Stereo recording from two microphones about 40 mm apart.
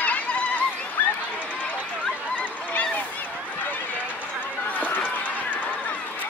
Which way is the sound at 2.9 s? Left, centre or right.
Left.